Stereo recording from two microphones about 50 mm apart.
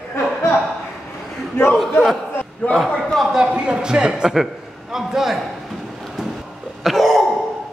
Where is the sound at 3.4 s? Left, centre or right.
Centre.